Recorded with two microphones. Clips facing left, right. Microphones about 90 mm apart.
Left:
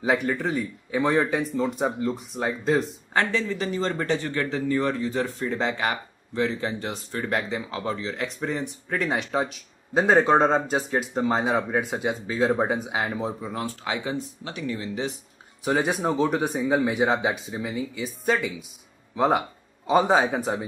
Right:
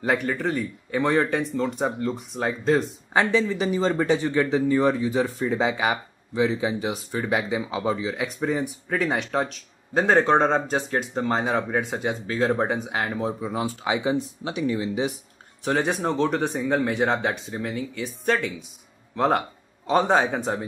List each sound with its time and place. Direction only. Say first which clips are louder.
0.0 s speech: even; centre (ahead or behind)
3.1 s speech: right 5 dB; 15° right (ahead or behind)
15.6 s speech: even; 5° left (ahead or behind)